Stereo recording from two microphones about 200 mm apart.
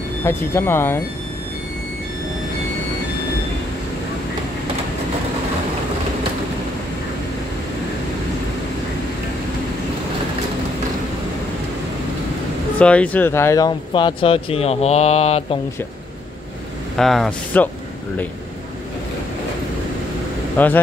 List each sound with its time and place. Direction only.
0.2 s speech: 10° left (ahead or behind)
12.7 s speech: 5° left (ahead or behind); by 15.6 s 30° left (ahead or behind)
16.9 s speech: centre (ahead or behind)
20.5 s speech: 10° left (ahead or behind)